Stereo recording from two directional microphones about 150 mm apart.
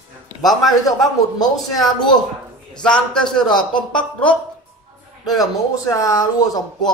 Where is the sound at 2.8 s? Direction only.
5° left (ahead or behind).